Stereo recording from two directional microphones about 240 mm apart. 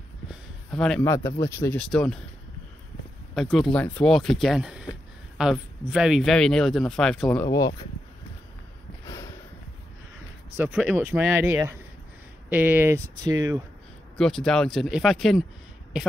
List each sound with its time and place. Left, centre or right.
0.3 s a sound: centre
1.4 s speech: centre
3.3 s a man's voice: centre
7.4 s speech: centre
9.0 s a sound: centre
10.5 s speech: centre
14.1 s a man's voice: centre